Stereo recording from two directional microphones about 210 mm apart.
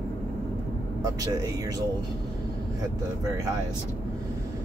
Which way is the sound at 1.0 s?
15° right (ahead or behind).